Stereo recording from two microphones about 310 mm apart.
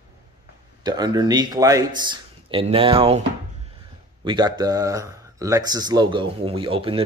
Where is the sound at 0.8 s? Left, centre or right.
Centre.